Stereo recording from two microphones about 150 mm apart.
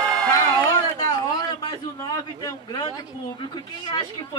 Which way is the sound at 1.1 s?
25° left (ahead or behind).